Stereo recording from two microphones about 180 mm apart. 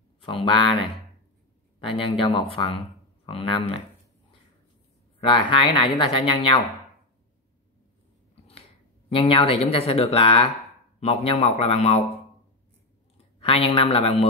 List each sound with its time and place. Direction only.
0.2 s speech: 30° left (ahead or behind)
5.2 s speech: 30° left (ahead or behind)
9.1 s speech: 30° left (ahead or behind)
13.4 s speech: 30° left (ahead or behind)